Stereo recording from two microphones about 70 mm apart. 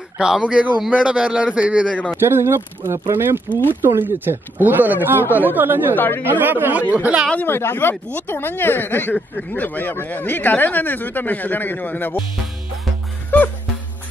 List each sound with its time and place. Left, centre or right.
0.2 s a man's voice: centre
2.1 s speech: right
5.9 s speech: left
6.2 s speech: right
7.3 s speech: left
13.3 s music: left